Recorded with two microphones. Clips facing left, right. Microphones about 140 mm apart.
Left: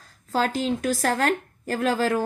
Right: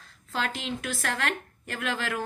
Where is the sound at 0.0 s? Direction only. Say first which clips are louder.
Left 7 dB; 40° left (ahead or behind).